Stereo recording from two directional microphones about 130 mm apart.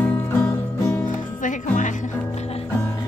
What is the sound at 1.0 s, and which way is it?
Music, 80° left.